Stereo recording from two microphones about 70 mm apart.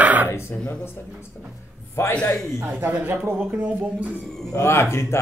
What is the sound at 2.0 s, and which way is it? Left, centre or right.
Speech, left.